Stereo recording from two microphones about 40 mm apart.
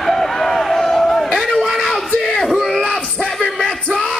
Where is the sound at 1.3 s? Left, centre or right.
Centre.